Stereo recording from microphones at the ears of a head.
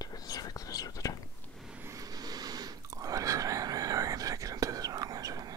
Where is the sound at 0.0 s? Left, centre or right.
Left.